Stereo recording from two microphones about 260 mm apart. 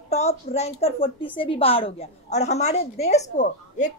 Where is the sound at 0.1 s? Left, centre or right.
Left.